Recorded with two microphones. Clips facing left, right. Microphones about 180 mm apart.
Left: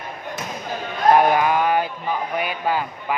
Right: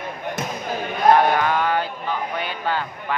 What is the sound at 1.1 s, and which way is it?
Speech, 10° left (ahead or behind).